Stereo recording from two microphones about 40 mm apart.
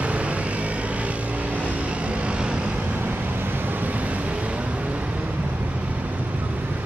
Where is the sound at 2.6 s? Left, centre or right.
Right.